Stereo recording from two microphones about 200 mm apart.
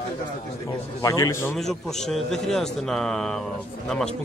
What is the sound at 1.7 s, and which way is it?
A man's voice, centre (ahead or behind).